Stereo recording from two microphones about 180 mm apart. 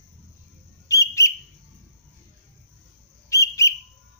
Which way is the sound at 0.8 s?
15° left (ahead or behind).